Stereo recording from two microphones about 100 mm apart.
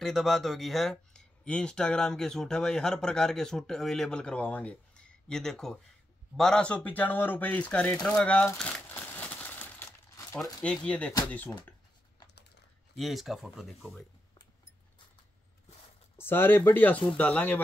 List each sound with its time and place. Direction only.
0.0 s speech: centre (ahead or behind)
8.6 s a sound: 15° left (ahead or behind)
10.6 s speech: 10° left (ahead or behind)
12.9 s speech: centre (ahead or behind)
16.2 s speech: 20° left (ahead or behind)